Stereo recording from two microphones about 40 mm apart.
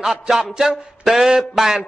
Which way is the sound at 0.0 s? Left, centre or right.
Centre.